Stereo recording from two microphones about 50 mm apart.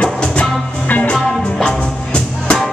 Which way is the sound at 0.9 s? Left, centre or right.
Left.